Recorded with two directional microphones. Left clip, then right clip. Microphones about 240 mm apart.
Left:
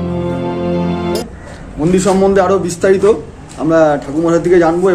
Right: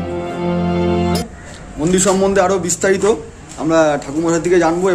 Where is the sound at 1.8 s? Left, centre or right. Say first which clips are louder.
Left 3 dB; centre.